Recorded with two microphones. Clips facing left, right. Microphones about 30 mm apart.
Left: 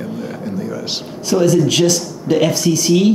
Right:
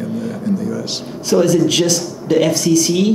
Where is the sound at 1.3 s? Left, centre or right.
Centre.